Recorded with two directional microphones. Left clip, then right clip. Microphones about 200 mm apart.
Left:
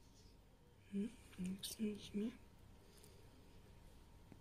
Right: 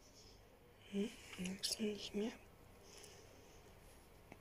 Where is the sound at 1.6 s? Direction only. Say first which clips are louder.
Right 6 dB; 35° left (ahead or behind).